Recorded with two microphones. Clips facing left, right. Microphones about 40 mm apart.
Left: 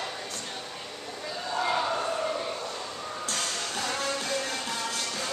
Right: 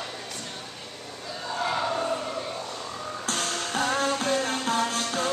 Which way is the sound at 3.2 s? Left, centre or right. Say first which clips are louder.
Right 3 dB; right.